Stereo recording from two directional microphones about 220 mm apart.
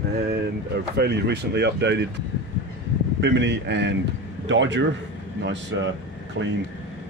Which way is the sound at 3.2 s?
50° right (ahead or behind).